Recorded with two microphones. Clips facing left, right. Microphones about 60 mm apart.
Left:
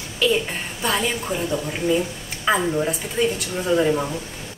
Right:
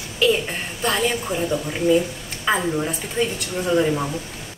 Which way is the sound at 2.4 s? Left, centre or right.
Centre.